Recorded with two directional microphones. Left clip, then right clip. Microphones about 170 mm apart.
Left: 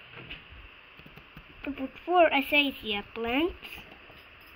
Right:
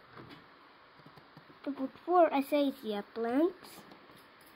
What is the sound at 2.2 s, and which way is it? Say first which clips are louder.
Speech: left 5 dB; 5° right (ahead or behind).